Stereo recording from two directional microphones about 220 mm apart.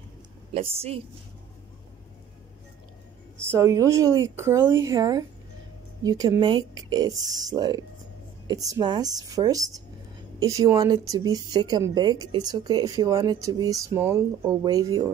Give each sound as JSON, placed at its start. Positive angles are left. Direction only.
{"t": 0.6, "sound": "a woman's voice", "side_deg": -25}
{"t": 3.4, "sound": "speech", "side_deg": -15}